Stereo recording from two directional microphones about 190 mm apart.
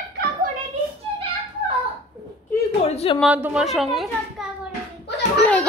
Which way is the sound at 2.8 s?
30° left (ahead or behind).